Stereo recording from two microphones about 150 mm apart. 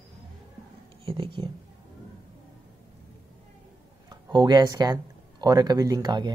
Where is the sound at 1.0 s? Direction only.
35° right (ahead or behind).